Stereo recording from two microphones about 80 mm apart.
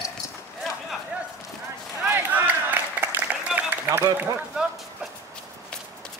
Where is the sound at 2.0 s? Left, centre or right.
Right.